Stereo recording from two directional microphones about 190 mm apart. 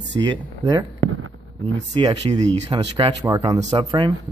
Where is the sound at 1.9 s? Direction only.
25° right (ahead or behind).